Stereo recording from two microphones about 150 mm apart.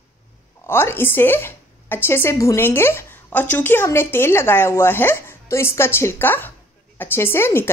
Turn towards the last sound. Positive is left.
turn(degrees=15)  # may be behind; listen again after turning